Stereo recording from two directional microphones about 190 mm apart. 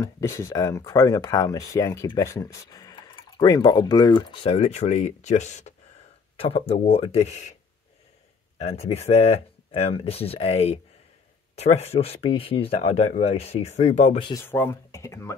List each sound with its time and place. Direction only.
0.0 s speech: 15° left (ahead or behind); by 7.5 s 35° left (ahead or behind)
8.5 s speech: 35° left (ahead or behind)
14.2 s speech: 15° left (ahead or behind)